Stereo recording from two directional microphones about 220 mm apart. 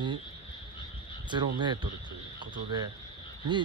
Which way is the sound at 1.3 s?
20° right (ahead or behind).